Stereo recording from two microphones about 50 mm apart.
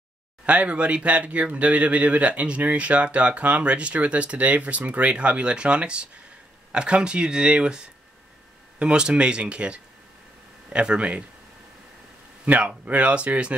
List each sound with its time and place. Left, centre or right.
0.5 s speech: right
12.4 s speech: right